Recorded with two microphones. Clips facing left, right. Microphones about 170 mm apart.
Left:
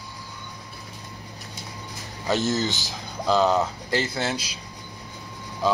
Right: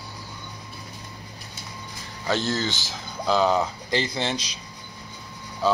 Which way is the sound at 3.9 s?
5° left (ahead or behind).